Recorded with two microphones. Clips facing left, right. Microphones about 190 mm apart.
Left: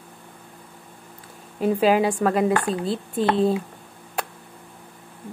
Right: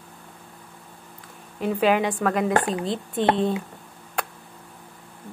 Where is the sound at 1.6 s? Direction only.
35° left (ahead or behind).